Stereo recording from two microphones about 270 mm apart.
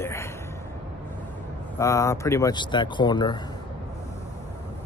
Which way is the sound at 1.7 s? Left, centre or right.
Centre.